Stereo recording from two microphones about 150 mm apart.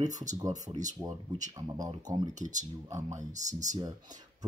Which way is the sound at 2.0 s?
25° right (ahead or behind).